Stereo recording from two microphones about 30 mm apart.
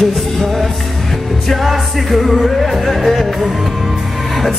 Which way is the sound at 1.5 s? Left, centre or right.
Centre.